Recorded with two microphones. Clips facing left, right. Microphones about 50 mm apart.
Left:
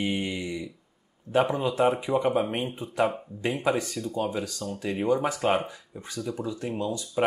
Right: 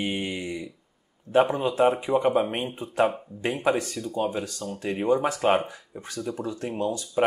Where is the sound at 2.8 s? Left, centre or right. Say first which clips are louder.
Right 3 dB; right.